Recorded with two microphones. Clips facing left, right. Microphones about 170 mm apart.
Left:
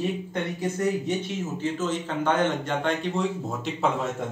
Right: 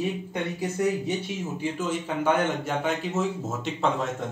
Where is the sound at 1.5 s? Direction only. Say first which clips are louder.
Left 1 dB; 10° right (ahead or behind).